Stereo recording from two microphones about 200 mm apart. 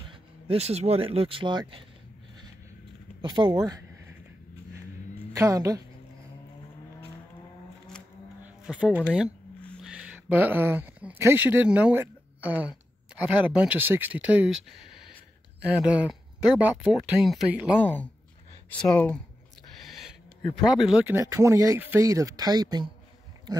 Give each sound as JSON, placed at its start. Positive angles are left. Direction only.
{"t": 0.1, "sound": "speech", "side_deg": -30}
{"t": 3.2, "sound": "speech", "side_deg": -20}
{"t": 5.3, "sound": "speech", "side_deg": -15}
{"t": 8.5, "sound": "speech", "side_deg": -5}
{"t": 17.7, "sound": "a sound", "side_deg": 10}
{"t": 20.6, "sound": "speech", "side_deg": 0}
{"t": 21.2, "sound": "speech", "side_deg": -15}